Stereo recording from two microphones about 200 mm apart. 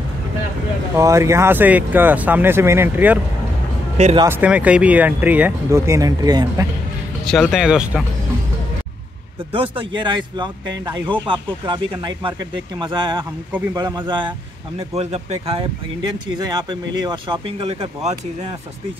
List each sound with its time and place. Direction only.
0.9 s speech: 15° right (ahead or behind)
4.2 s speech: 10° right (ahead or behind)
7.2 s speech: centre (ahead or behind)
9.5 s speech: 25° right (ahead or behind)
17.0 s speech: 25° right (ahead or behind)